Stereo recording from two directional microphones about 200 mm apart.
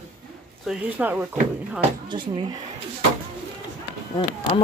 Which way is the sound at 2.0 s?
25° right (ahead or behind).